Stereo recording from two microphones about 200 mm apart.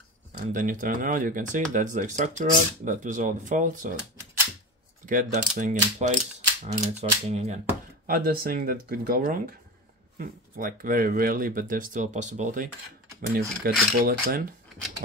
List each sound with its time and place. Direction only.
0.3 s speech: 40° right (ahead or behind)
5.0 s speech: 40° right (ahead or behind)
8.1 s speech: 45° right (ahead or behind)
13.7 s speech: 45° right (ahead or behind)